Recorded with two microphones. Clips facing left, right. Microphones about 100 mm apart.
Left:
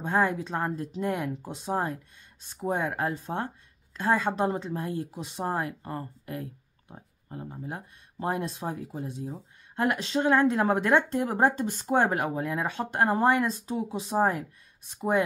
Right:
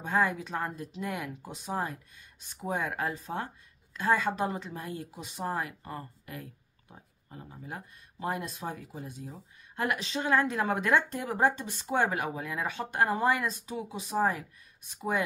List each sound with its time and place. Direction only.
0.0 s speech: 35° left (ahead or behind)